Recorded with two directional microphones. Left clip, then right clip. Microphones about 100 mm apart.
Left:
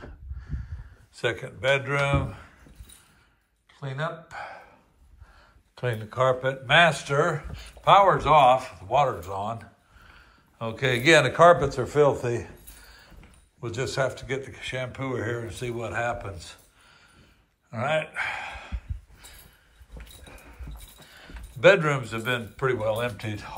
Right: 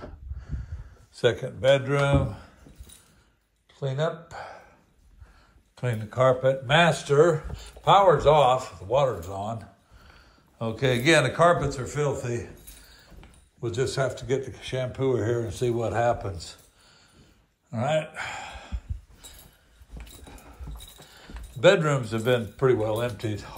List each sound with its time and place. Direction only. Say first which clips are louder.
0.0 s a sound: right 2 dB; 70° right (ahead or behind)
1.2 s speech: right 4 dB; 40° right (ahead or behind)
3.7 s speech: right 4 dB; 70° right (ahead or behind)
5.8 s speech: left 2 dB; 15° right (ahead or behind)
6.0 s a man's voice: right 3 dB; 30° right (ahead or behind)
11.6 s speech: left 7 dB; centre (ahead or behind)
13.6 s speech: right 1 dB; 25° right (ahead or behind); by 16.3 s 50° right (ahead or behind)
16.3 s a sound: right 3 dB; 35° right (ahead or behind)
21.1 s a sound: even; 35° right (ahead or behind)
22.0 s speech: right 4 dB; 45° right (ahead or behind)
22.8 s speech: left 1 dB; 35° right (ahead or behind)